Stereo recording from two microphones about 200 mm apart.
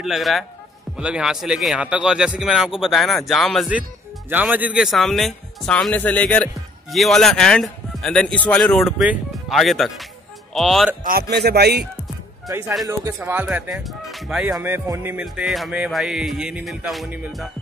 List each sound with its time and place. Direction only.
0.0 s speech: centre (ahead or behind)
11.1 s a man's voice: 50° right (ahead or behind)
12.4 s speech: 10° right (ahead or behind)